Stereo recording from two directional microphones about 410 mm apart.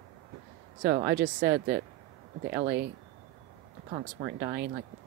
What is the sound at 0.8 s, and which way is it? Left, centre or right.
Speech, right.